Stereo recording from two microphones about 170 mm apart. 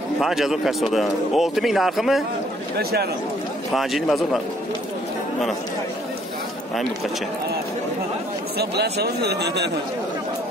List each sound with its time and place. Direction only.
0.2 s speech: centre (ahead or behind)
2.8 s speech: 65° right (ahead or behind)
3.7 s speech: centre (ahead or behind)
8.5 s speech: 75° right (ahead or behind)